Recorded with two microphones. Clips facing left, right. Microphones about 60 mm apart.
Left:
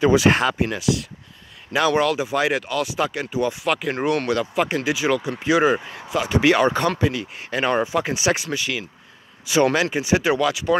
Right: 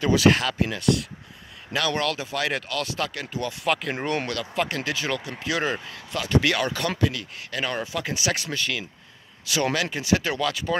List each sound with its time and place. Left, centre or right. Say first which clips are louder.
0.0 s speech: left 3 dB; centre
0.7 s speech: left 1 dB; centre
1.7 s speech: left 6 dB; centre
3.6 s speech: left 2 dB; centre
4.3 s speech: left 6 dB; centre
8.5 s speech: left 3 dB; centre
9.8 s speech: left 4 dB; left